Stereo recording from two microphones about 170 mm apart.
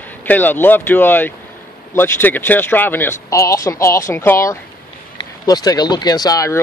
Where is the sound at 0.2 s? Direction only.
10° left (ahead or behind).